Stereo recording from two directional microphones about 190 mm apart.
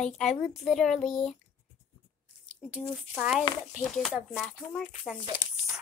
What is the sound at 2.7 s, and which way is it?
Speech, 5° right (ahead or behind).